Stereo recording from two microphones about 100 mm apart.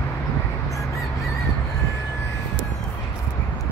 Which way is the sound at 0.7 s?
30° left (ahead or behind).